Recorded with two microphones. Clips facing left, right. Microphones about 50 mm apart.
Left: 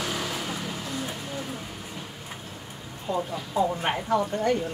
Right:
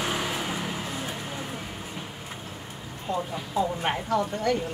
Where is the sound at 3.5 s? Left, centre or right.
Centre.